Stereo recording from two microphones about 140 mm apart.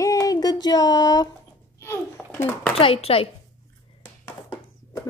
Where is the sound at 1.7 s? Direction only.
20° left (ahead or behind).